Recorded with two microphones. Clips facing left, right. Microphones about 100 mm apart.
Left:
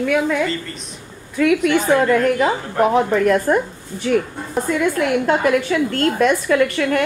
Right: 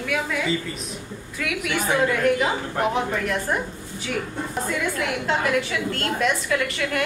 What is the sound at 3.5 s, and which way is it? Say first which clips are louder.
Speech: left 8 dB; 55° left (ahead or behind).